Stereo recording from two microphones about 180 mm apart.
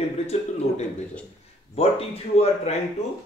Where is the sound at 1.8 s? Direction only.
35° left (ahead or behind).